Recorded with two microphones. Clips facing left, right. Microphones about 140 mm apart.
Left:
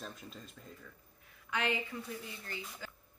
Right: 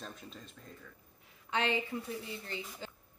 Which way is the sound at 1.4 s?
25° right (ahead or behind).